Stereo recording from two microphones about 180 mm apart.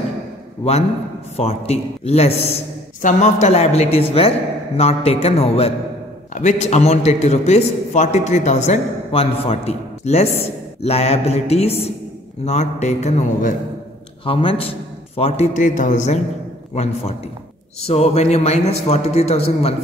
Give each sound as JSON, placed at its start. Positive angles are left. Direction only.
{"t": 1.3, "sound": "a man's voice", "side_deg": 35}
{"t": 14.2, "sound": "a man's voice", "side_deg": 30}